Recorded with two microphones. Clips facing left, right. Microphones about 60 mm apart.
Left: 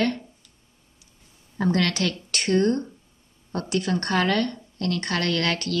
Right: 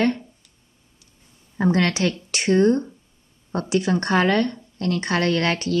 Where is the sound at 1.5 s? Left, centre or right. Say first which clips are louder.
Right 3 dB; right.